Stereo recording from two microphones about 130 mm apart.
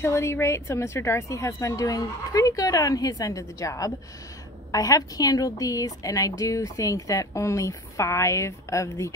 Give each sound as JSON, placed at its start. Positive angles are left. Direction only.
{"t": 0.0, "sound": "a woman's voice", "side_deg": 20}